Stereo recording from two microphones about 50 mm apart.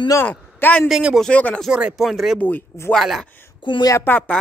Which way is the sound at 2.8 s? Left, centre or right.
Left.